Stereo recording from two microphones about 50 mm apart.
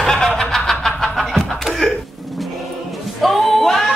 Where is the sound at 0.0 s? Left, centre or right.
Centre.